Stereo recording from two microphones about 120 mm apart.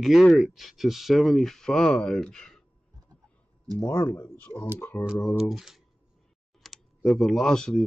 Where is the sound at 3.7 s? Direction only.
20° left (ahead or behind).